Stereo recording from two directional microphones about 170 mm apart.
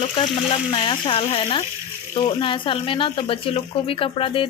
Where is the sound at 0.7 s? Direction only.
30° left (ahead or behind).